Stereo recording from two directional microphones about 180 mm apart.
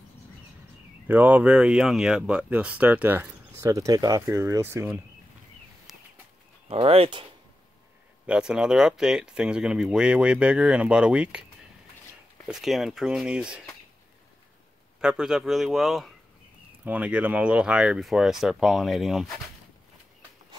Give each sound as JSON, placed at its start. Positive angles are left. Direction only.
{"t": 1.0, "sound": "speech", "side_deg": -10}
{"t": 5.9, "sound": "a sound", "side_deg": 0}
{"t": 6.7, "sound": "speech", "side_deg": -30}
{"t": 8.3, "sound": "speech", "side_deg": -5}
{"t": 12.4, "sound": "speech", "side_deg": 0}
{"t": 15.0, "sound": "speech", "side_deg": -5}